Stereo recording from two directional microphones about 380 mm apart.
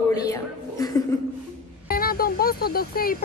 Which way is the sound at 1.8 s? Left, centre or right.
Left.